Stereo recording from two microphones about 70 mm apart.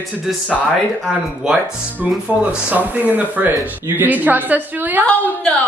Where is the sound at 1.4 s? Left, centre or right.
Centre.